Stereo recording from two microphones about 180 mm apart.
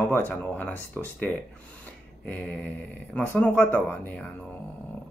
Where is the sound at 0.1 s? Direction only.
10° left (ahead or behind).